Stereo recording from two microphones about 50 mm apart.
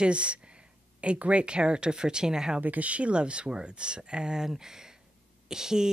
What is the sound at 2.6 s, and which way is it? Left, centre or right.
Speech, right.